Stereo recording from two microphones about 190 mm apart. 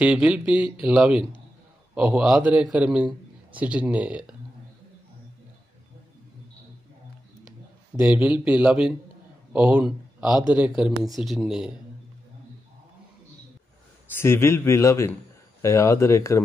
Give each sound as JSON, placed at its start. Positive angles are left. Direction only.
{"t": 0.0, "sound": "a man's voice", "side_deg": -5}
{"t": 8.0, "sound": "a man's voice", "side_deg": -5}
{"t": 14.1, "sound": "a man's voice", "side_deg": 15}